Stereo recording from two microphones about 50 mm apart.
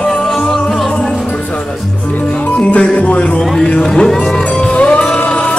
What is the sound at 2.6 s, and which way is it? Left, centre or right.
Music, left.